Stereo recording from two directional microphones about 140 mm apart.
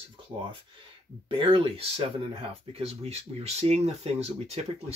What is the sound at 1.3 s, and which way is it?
Speech, 40° right (ahead or behind).